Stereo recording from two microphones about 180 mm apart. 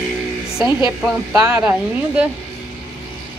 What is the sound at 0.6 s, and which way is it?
Speech, 25° left (ahead or behind).